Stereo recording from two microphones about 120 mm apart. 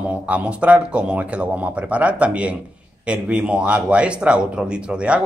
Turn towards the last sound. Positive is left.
turn(degrees=-10)  # may be behind; listen again after turning